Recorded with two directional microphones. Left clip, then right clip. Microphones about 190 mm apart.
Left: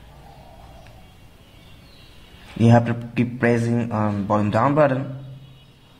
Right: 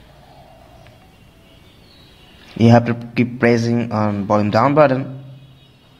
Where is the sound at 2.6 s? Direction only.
15° right (ahead or behind).